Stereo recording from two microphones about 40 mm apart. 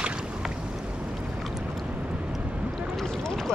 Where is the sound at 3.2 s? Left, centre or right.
Centre.